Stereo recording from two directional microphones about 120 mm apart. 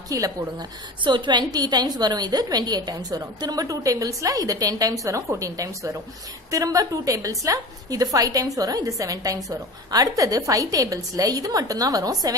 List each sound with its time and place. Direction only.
0.1 s a woman's voice: 25° right (ahead or behind)
1.0 s a woman's voice: 40° right (ahead or behind)
6.5 s a woman's voice: 30° right (ahead or behind)